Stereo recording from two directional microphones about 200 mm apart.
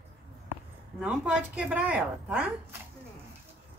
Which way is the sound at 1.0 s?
5° right (ahead or behind).